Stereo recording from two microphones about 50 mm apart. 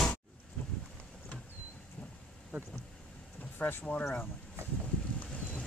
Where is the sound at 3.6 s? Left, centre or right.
Left.